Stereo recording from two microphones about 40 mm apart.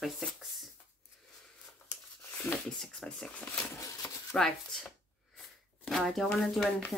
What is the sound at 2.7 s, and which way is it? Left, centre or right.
Speech, centre.